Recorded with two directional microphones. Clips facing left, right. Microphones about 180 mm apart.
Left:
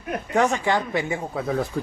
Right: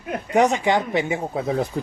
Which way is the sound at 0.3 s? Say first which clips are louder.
Right 3 dB; 20° right (ahead or behind).